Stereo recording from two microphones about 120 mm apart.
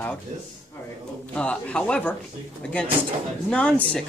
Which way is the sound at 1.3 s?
10° left (ahead or behind).